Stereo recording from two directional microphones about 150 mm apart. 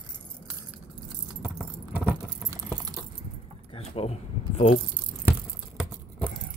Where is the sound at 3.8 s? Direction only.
45° left (ahead or behind).